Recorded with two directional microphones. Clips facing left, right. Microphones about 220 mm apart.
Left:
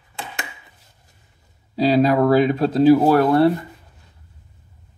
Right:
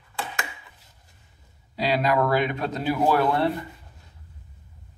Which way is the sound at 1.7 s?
30° left (ahead or behind).